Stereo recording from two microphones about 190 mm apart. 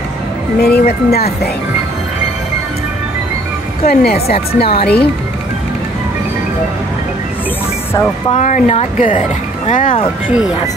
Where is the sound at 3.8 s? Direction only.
50° left (ahead or behind).